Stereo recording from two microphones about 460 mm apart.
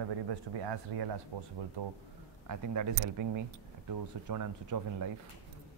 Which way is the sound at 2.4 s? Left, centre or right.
Right.